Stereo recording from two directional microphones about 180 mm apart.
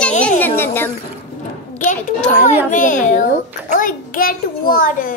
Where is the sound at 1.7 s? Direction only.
45° left (ahead or behind).